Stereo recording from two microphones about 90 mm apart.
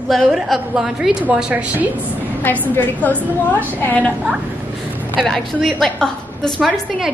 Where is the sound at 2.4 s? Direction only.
20° left (ahead or behind).